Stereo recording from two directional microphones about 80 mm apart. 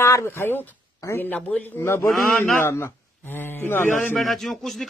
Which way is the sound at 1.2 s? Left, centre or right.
Centre.